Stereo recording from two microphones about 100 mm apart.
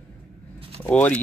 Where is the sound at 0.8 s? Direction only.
15° left (ahead or behind).